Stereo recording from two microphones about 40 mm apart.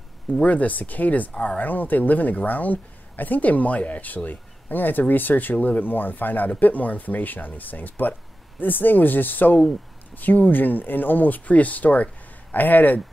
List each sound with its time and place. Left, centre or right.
0.4 s speech: left